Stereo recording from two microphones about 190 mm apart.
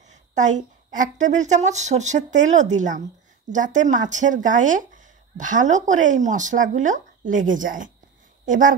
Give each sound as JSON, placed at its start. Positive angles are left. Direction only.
{"t": 0.1, "sound": "a woman's voice", "side_deg": -40}